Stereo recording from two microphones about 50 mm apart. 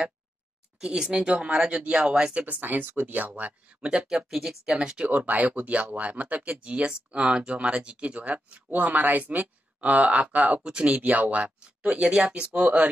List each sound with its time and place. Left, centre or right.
0.7 s speech: centre
2.4 s speech: right
3.3 s speech: right
3.9 s speech: centre
4.7 s speech: centre
5.1 s speech: right
10.6 s speech: centre
11.0 s speech: right